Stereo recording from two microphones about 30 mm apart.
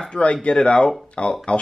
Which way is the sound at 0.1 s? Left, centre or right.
Left.